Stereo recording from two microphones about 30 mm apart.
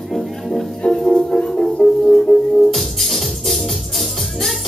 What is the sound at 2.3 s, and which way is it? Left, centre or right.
Music, left.